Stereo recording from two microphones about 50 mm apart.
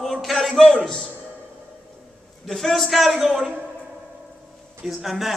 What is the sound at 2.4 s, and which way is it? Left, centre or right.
A man's voice, centre.